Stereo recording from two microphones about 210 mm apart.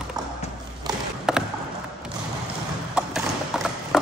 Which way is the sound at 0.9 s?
20° right (ahead or behind).